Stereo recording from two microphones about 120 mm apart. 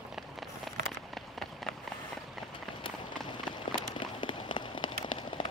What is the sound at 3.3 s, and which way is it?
Run, 40° left (ahead or behind).